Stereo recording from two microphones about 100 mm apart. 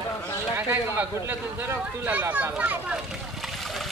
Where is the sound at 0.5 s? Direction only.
20° right (ahead or behind).